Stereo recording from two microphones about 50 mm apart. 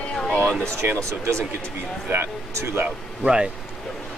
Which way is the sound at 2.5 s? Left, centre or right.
Right.